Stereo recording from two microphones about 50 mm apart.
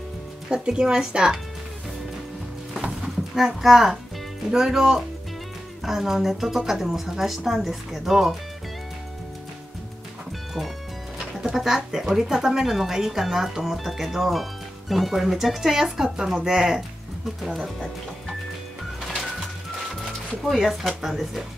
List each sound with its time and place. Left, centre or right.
0.5 s speech: centre
3.0 s a child's voice: centre
11.4 s speech: centre
19.9 s music: centre
20.6 s speech: centre